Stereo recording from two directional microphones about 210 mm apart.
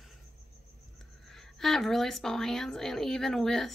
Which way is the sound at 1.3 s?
Centre (ahead or behind).